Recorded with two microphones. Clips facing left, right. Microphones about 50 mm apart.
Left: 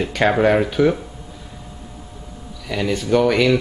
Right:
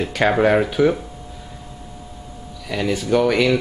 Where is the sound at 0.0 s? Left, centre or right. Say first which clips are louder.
Even; centre.